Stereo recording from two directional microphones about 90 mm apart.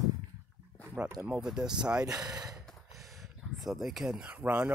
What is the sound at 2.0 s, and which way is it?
Speech, 45° right (ahead or behind).